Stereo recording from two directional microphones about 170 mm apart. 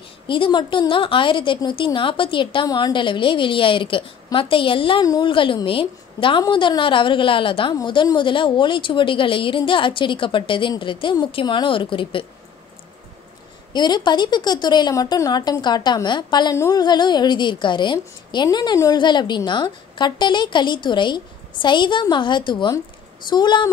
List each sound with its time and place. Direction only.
0.3 s speech: 30° left (ahead or behind)
13.7 s speech: 25° left (ahead or behind)